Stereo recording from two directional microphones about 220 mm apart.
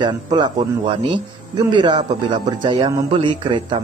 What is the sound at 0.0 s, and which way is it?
Speech, 20° right (ahead or behind).